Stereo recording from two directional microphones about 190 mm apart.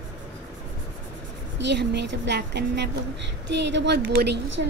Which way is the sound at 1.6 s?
65° right (ahead or behind).